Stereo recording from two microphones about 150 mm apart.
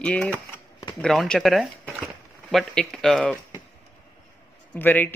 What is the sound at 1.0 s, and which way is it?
Speech, 5° left (ahead or behind).